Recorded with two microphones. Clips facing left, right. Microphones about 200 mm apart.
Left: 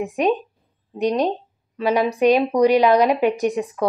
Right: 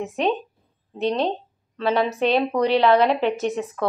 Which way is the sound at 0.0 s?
10° left (ahead or behind).